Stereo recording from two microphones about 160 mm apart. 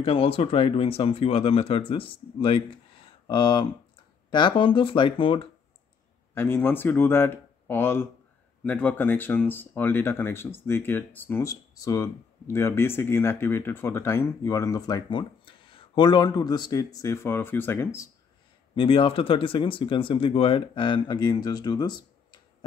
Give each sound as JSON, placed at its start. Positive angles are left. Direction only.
{"t": 0.0, "sound": "speech", "side_deg": 35}
{"t": 3.1, "sound": "a sound", "side_deg": 30}
{"t": 4.3, "sound": "speech", "side_deg": 30}
{"t": 6.3, "sound": "speech", "side_deg": 15}
{"t": 18.8, "sound": "speech", "side_deg": 35}